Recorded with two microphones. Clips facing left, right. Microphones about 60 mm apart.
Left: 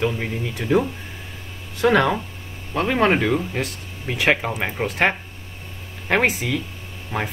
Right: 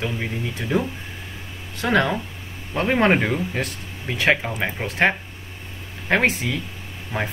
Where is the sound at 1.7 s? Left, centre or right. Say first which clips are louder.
Left 3 dB; centre.